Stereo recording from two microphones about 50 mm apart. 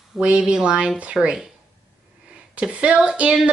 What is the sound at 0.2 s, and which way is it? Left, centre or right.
Speech, centre.